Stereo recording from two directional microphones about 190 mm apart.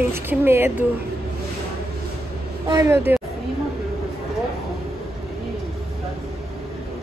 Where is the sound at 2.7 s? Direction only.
15° right (ahead or behind).